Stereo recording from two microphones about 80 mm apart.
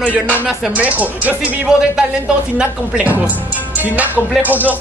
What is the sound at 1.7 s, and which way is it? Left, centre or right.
Speech, centre.